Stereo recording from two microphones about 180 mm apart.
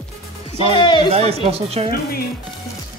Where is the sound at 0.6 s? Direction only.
30° left (ahead or behind).